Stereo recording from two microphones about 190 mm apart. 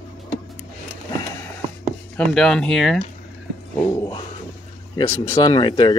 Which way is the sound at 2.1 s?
Centre (ahead or behind).